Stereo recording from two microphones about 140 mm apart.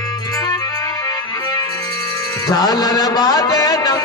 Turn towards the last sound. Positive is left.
turn(degrees=25)  # may be behind; listen again after turning